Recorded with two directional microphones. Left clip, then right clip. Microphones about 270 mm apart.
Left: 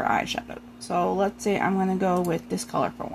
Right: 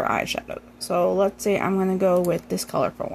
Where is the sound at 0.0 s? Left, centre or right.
Centre.